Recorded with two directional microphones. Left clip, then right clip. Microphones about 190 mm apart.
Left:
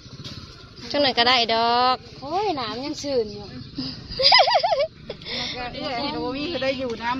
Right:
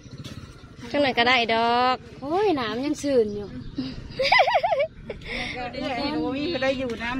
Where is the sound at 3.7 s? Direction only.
10° right (ahead or behind).